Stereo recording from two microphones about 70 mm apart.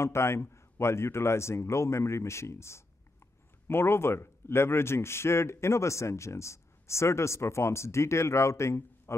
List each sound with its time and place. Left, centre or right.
0.0 s a man's voice: left